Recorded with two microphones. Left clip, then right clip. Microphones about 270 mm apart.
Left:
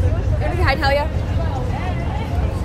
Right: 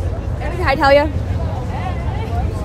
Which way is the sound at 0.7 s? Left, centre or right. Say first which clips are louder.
Right 10 dB; right.